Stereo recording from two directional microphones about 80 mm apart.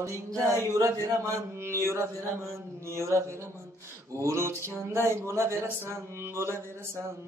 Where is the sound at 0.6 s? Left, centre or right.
Right.